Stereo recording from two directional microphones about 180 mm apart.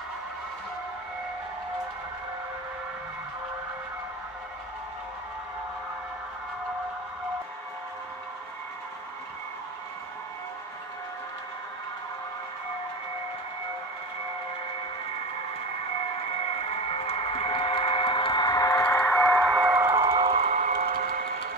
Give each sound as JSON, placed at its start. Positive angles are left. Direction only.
{"t": 16.6, "sound": "train", "side_deg": 35}
{"t": 19.5, "sound": "a sound", "side_deg": -10}
{"t": 20.1, "sound": "train", "side_deg": -30}